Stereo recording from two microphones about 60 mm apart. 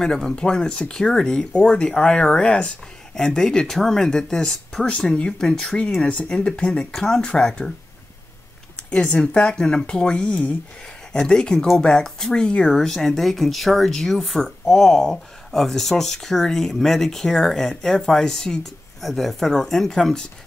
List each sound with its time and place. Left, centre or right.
0.0 s speech: centre
9.1 s speech: centre